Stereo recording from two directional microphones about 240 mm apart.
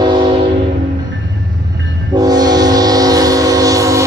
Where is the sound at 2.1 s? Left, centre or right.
Centre.